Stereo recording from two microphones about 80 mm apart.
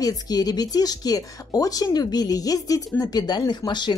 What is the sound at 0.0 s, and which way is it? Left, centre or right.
Speech, left.